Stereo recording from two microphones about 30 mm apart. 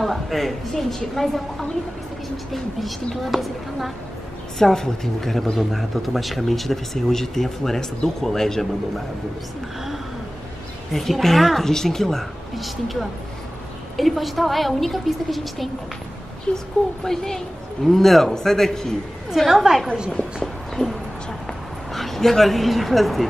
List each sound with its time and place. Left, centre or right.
0.0 s a woman's voice: centre
3.2 s speech: centre
4.6 s a woman's voice: centre
5.6 s a woman's voice: centre
10.9 s a woman's voice: centre
12.5 s speech: centre
16.5 s a woman's voice: centre
19.5 s a woman's voice: centre
20.8 s speech: left
21.9 s speech: centre